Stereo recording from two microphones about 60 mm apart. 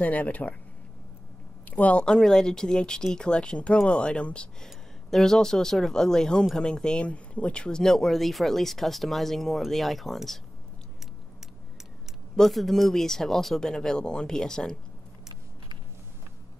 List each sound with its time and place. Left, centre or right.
0.0 s speech: left
1.7 s speech: left
4.6 s speech: centre
12.4 s speech: centre